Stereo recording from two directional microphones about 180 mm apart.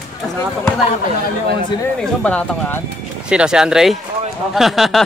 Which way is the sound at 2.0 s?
5° left (ahead or behind).